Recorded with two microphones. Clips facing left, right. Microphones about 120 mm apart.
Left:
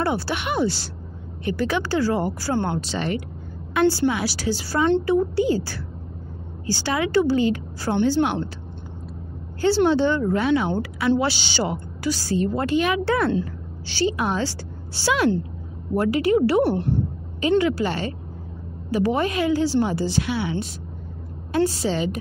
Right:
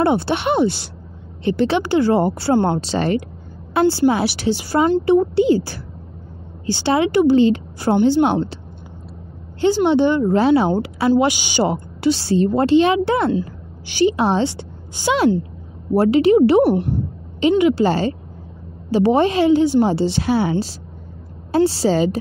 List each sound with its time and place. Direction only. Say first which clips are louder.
0.0 s a woman's voice: right 7 dB; 25° right (ahead or behind)
9.6 s a woman's voice: right 3 dB; 20° right (ahead or behind)
10.3 s a woman's voice: right 6 dB; 35° right (ahead or behind)
11.2 s a woman's voice: right 6 dB; 15° right (ahead or behind)
11.6 s a woman's voice: right 7 dB; 25° right (ahead or behind)
14.1 s a woman's voice: right 6 dB; 30° right (ahead or behind)
17.8 s a woman's voice: right 8 dB; 35° right (ahead or behind)
20.2 s a woman's voice: right 7 dB; 40° right (ahead or behind)